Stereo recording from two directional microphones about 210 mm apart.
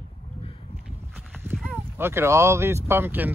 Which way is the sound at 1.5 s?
10° right (ahead or behind).